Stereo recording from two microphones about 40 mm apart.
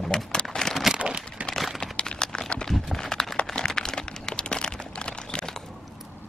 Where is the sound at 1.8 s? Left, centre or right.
Left.